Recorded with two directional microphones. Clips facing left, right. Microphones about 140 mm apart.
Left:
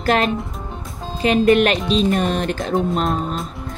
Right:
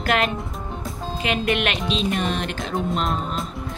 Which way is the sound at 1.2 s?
40° left (ahead or behind).